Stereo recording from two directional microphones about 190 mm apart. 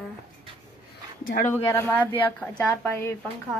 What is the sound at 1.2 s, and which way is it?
Speech, 50° left (ahead or behind).